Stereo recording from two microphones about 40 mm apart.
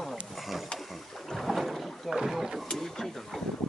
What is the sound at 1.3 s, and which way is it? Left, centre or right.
Boat, centre.